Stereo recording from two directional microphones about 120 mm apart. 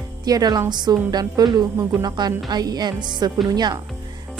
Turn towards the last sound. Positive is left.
turn(degrees=-35)  # may be behind; listen again after turning